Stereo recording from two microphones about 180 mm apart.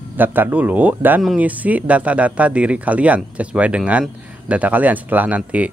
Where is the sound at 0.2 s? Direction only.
10° right (ahead or behind).